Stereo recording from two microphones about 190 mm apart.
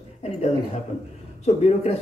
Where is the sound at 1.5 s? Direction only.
35° left (ahead or behind).